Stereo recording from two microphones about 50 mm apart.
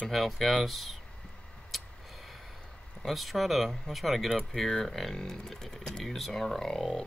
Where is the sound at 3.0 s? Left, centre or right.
Centre.